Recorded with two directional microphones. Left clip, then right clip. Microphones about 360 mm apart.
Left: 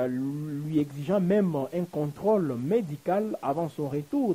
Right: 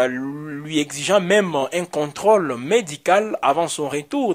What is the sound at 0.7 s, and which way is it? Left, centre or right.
Speech, centre.